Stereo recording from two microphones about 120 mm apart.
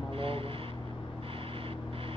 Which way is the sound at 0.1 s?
50° right (ahead or behind).